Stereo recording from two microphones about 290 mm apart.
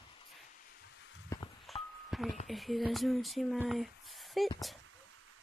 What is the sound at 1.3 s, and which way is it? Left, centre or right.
Walk, centre.